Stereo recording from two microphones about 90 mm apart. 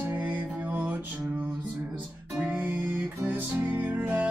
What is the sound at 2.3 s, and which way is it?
Music, 10° right (ahead or behind).